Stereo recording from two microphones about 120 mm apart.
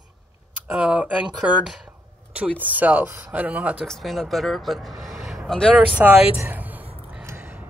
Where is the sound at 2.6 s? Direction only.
15° right (ahead or behind).